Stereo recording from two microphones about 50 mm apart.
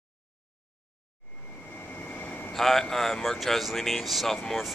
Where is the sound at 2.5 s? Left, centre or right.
Centre.